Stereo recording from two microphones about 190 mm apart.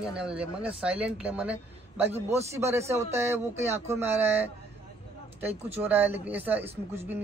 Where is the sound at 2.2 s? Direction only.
15° right (ahead or behind).